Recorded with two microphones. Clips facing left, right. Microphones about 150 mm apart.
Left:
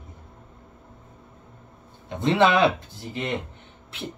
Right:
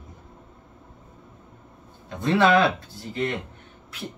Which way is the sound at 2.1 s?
20° left (ahead or behind).